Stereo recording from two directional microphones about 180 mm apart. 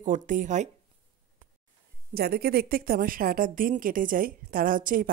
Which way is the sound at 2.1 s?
60° right (ahead or behind).